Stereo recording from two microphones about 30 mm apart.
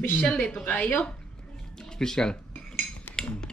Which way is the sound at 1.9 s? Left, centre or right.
Centre.